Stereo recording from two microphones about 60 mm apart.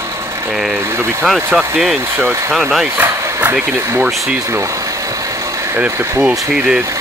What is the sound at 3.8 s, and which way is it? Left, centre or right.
Speech, right.